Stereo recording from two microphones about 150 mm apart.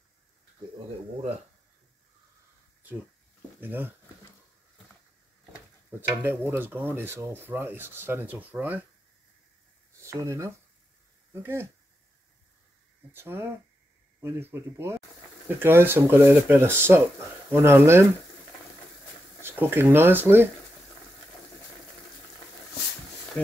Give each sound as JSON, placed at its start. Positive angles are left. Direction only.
{"t": 3.6, "sound": "speech", "side_deg": -15}
{"t": 5.9, "sound": "speech", "side_deg": -15}
{"t": 9.9, "sound": "speech", "side_deg": -20}
{"t": 13.1, "sound": "speech", "side_deg": -15}
{"t": 19.4, "sound": "speech", "side_deg": -15}